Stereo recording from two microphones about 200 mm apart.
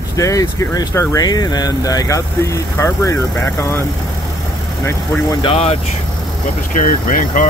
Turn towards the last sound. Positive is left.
turn(degrees=40)  # may be behind; listen again after turning